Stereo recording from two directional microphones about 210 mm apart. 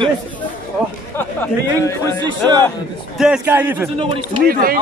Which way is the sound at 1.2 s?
10° left (ahead or behind).